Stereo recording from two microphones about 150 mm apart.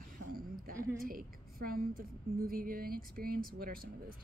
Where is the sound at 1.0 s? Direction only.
75° right (ahead or behind).